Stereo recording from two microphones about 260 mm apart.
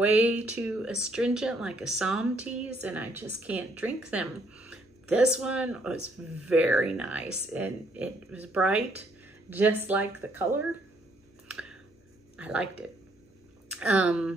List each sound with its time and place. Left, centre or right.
0.0 s speech: centre
11.4 s a sound: centre
12.4 s speech: centre
13.7 s speech: centre